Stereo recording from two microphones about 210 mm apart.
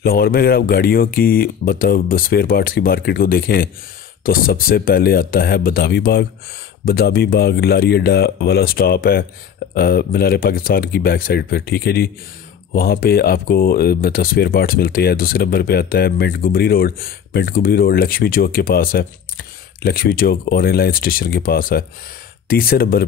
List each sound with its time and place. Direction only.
0.0 s speech: 45° left (ahead or behind)